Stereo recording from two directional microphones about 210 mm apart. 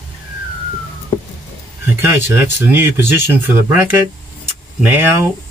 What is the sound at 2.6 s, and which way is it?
Speech, 10° right (ahead or behind).